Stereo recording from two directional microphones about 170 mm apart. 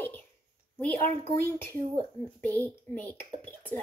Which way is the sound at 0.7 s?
10° left (ahead or behind).